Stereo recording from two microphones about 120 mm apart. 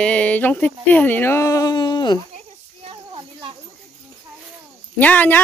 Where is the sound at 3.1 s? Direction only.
45° right (ahead or behind).